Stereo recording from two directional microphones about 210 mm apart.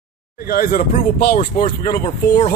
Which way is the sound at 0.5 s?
45° left (ahead or behind).